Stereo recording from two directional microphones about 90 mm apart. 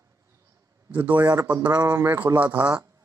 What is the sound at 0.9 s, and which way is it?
Speech, 20° right (ahead or behind).